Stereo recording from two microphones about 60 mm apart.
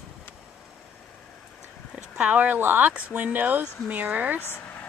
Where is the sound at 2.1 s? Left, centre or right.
Right.